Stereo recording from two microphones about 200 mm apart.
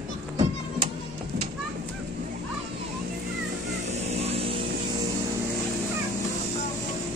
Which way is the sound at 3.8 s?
35° right (ahead or behind).